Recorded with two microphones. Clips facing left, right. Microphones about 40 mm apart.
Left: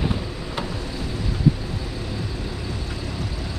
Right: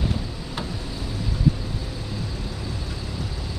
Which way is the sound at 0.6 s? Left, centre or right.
Centre.